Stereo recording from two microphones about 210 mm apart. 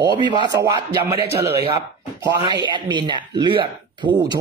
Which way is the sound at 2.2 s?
20° right (ahead or behind).